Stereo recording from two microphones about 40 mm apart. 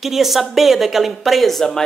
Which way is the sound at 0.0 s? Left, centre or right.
Centre.